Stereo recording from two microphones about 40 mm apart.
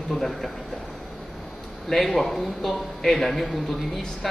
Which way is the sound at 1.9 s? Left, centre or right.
Centre.